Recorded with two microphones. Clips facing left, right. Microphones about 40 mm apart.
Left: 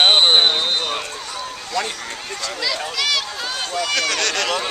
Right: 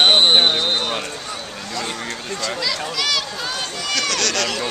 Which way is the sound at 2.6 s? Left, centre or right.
Centre.